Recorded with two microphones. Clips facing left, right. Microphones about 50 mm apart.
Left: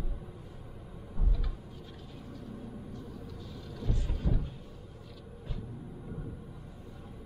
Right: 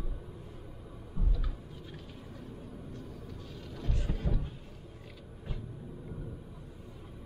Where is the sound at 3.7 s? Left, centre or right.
Right.